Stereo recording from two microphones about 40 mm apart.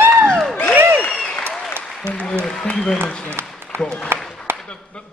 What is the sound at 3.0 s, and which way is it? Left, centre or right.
Applause, right.